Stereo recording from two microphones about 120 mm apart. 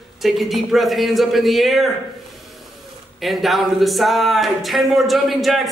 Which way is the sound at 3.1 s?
Centre (ahead or behind).